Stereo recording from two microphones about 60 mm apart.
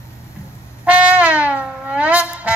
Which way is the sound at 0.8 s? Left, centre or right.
Right.